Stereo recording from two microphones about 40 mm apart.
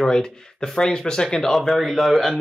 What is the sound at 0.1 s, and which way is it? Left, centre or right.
Speech, centre.